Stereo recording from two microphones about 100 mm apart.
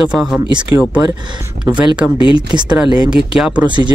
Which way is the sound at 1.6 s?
10° right (ahead or behind).